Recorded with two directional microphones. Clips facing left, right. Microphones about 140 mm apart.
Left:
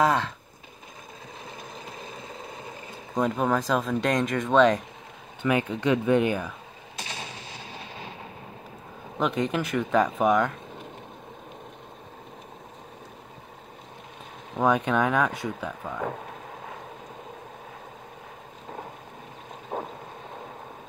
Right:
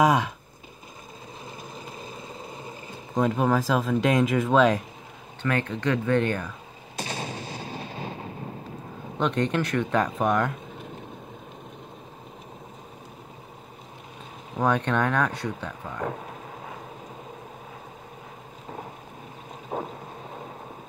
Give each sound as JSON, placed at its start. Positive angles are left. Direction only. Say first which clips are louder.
{"t": 0.0, "sound": "speech", "louder": "right 2 dB", "side_deg": -10}
{"t": 2.5, "sound": "speech", "louder": "right 1 dB", "side_deg": 0}
{"t": 5.4, "sound": "speech", "louder": "left 2 dB", "side_deg": 10}
{"t": 7.0, "sound": "gunshot", "louder": "right 6 dB", "side_deg": -40}
{"t": 9.2, "sound": "speech", "louder": "right 1 dB", "side_deg": 5}
{"t": 14.5, "sound": "speech", "louder": "left 1 dB", "side_deg": 5}